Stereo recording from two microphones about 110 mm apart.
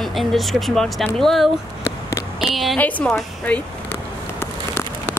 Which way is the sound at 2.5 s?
Centre (ahead or behind).